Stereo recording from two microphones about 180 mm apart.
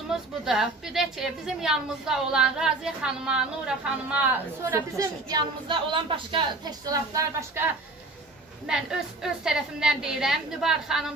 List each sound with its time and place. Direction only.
0.1 s a woman's voice: centre (ahead or behind)
4.9 s a woman's voice: 25° right (ahead or behind)
8.6 s a woman's voice: 5° right (ahead or behind)